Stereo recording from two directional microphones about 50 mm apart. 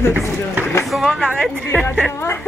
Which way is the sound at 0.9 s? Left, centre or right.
Centre.